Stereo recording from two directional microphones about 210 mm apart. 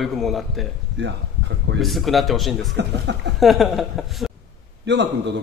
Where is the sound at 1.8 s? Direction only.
Centre (ahead or behind).